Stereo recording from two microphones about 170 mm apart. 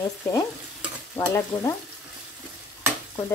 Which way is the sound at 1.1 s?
15° left (ahead or behind).